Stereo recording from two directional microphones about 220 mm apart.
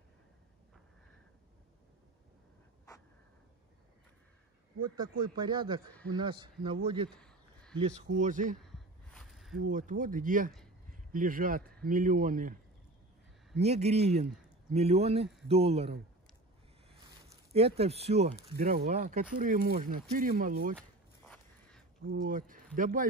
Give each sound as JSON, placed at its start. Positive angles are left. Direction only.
{"t": 5.2, "sound": "speech", "side_deg": -20}
{"t": 7.1, "sound": "a sound", "side_deg": 5}
{"t": 8.2, "sound": "a man's voice", "side_deg": -35}
{"t": 8.7, "sound": "a sound", "side_deg": 0}
{"t": 9.7, "sound": "a man's voice", "side_deg": -35}
{"t": 13.6, "sound": "speech", "side_deg": -30}
{"t": 17.5, "sound": "a man's voice", "side_deg": -25}
{"t": 21.3, "sound": "a sound", "side_deg": 5}
{"t": 22.1, "sound": "a man's voice", "side_deg": -40}